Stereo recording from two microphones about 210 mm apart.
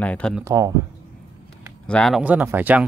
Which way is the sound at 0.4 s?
15° right (ahead or behind).